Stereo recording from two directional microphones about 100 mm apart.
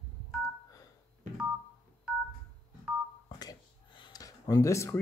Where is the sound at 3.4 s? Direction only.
45° left (ahead or behind).